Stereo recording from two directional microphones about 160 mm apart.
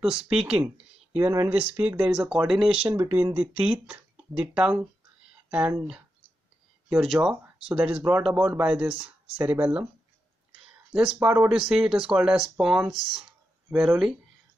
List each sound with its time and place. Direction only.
0.0 s speech: 5° right (ahead or behind)
7.0 s speech: centre (ahead or behind)
11.1 s speech: 10° right (ahead or behind)